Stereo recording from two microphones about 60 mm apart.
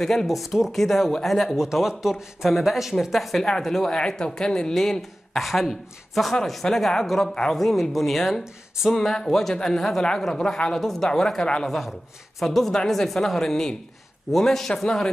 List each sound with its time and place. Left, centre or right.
0.0 s speech: centre
11.6 s speech: centre